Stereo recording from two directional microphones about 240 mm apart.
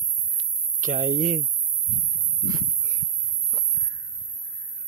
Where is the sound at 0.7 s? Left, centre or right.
Right.